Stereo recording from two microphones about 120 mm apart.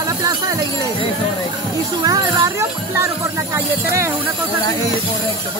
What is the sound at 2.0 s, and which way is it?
Music, 30° right (ahead or behind).